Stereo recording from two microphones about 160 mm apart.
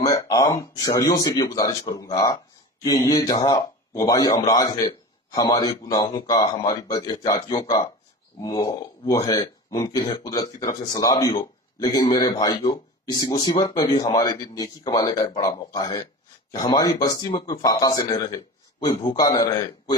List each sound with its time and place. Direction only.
0.0 s speech: 25° left (ahead or behind)